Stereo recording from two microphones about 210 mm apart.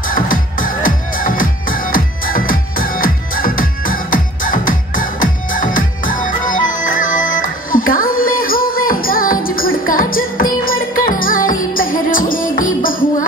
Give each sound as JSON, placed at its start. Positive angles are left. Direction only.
{"t": 0.1, "sound": "music", "side_deg": 40}